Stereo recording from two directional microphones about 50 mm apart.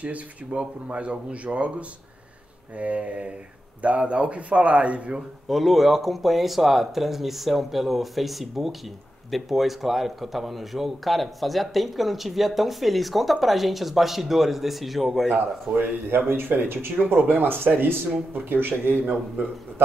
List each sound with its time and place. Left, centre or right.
0.0 s speech: right
5.5 s a man's voice: centre
15.2 s a man's voice: right
17.0 s speech: right
17.3 s a man's voice: right